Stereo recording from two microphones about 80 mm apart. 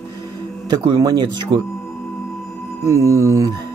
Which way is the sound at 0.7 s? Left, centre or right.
Right.